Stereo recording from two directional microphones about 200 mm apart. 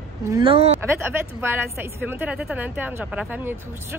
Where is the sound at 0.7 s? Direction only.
10° right (ahead or behind).